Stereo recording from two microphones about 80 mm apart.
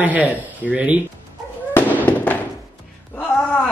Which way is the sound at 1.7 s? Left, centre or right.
Centre.